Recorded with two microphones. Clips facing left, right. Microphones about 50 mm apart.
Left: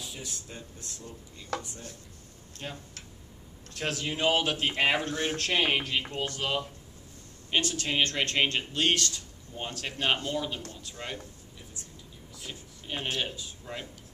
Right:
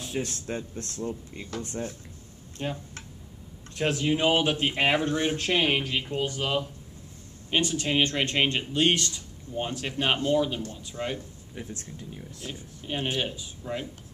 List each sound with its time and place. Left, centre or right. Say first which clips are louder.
0.0 s speech: right 9 dB; right
2.6 s speech: right 7 dB; centre
5.5 s speech: right 1 dB; centre
11.5 s speech: right 9 dB; right
12.4 s speech: right 4 dB; centre